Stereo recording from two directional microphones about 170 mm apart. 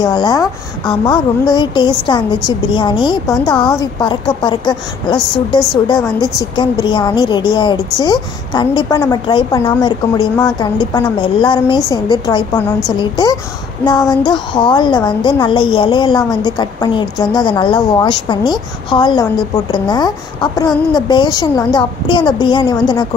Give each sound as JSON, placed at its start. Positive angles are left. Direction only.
{"t": 0.0, "sound": "a woman's voice", "side_deg": 25}
{"t": 5.1, "sound": "a woman's voice", "side_deg": 5}
{"t": 6.5, "sound": "a woman's voice", "side_deg": 25}